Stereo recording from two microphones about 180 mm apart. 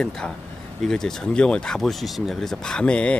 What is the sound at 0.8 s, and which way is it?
Speech, 5° left (ahead or behind).